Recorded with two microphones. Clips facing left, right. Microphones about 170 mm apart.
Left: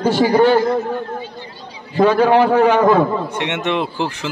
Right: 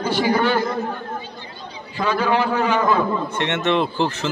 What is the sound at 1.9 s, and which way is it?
A man's voice, 50° left (ahead or behind).